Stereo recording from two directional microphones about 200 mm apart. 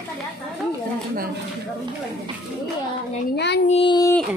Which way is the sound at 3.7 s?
25° left (ahead or behind).